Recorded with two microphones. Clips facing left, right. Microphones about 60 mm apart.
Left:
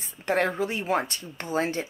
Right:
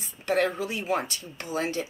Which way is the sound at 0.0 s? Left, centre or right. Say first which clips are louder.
Even; left.